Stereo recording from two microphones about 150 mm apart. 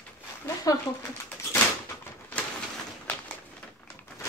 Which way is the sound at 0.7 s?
25° left (ahead or behind).